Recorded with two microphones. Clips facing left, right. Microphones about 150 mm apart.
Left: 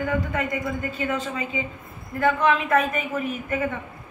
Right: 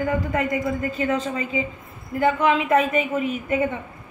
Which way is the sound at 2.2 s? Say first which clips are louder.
Right 1 dB; 20° right (ahead or behind).